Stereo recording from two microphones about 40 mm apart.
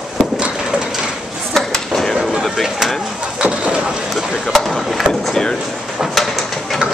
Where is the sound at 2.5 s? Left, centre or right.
Centre.